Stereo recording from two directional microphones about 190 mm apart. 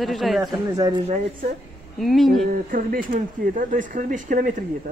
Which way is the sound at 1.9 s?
Centre (ahead or behind).